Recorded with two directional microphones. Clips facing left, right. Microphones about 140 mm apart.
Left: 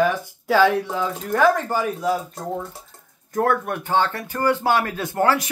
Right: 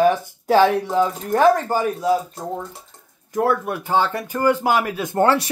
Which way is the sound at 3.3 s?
5° right (ahead or behind).